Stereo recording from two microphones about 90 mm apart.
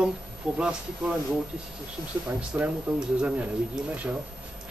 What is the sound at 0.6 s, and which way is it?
Speech, 10° right (ahead or behind).